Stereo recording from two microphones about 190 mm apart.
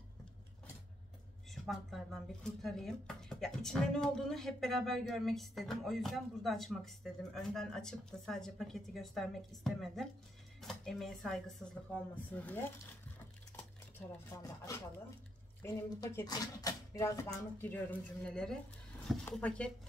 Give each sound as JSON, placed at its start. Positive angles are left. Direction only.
{"t": 1.5, "sound": "a sound", "side_deg": 0}
{"t": 2.6, "sound": "speech", "side_deg": 0}
{"t": 13.9, "sound": "speech", "side_deg": 15}